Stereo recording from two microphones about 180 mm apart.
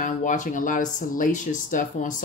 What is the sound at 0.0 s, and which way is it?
Speech, 45° left (ahead or behind).